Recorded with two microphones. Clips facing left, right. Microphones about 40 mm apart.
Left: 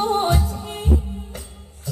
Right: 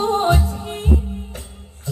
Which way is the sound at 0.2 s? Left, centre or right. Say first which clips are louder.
Right 3 dB; right.